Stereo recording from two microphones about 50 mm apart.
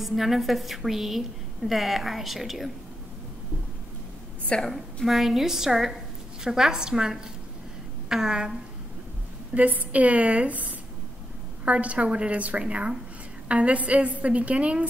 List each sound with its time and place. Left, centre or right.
0.0 s a woman's voice: centre
4.6 s a woman's voice: centre
5.0 s a woman's voice: centre
9.5 s a woman's voice: right